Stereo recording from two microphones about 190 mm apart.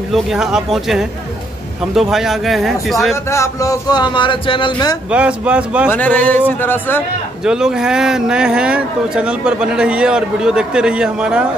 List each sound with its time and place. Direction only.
0.1 s a man's voice: centre (ahead or behind)
3.3 s speech: 15° left (ahead or behind)
5.1 s speech: 5° right (ahead or behind)
5.9 s speech: 10° left (ahead or behind)
7.4 s a man's voice: 5° right (ahead or behind)